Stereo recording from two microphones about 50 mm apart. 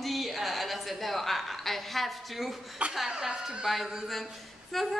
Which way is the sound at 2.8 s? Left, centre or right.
Right.